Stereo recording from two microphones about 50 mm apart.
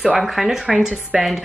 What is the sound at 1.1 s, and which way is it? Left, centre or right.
Speech, centre.